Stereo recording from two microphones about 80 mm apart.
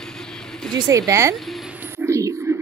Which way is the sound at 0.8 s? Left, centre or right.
Right.